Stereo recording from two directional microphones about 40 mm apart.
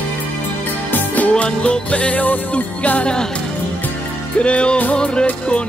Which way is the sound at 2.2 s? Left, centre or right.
Left.